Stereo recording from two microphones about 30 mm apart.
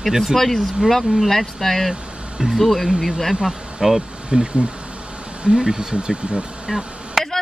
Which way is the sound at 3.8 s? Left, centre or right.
Right.